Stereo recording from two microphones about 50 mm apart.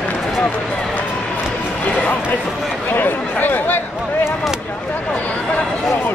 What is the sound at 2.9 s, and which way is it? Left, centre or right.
Speech, left.